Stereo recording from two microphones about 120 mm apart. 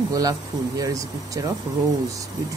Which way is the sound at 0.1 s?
30° right (ahead or behind).